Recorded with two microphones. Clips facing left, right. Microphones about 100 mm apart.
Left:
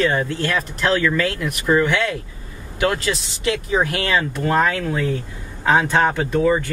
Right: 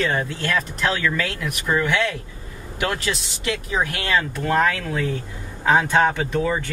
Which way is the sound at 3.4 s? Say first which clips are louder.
Left 4 dB; 35° left (ahead or behind).